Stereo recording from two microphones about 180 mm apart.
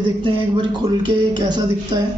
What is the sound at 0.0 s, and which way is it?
Speech, 25° right (ahead or behind).